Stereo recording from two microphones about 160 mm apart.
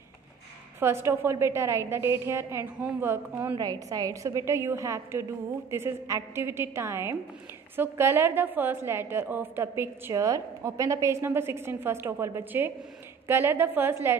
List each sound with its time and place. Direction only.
0.7 s a woman's voice: 15° right (ahead or behind)
3.5 s a woman's voice: 25° right (ahead or behind)